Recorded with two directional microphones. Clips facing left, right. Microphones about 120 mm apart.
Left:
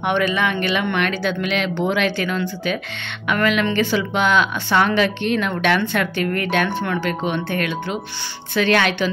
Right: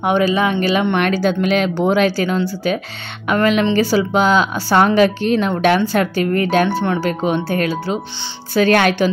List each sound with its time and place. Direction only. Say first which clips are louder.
0.0 s speech: right 4 dB; 35° right (ahead or behind)